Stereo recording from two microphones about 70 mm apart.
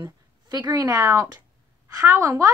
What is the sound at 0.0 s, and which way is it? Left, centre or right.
A woman's voice, right.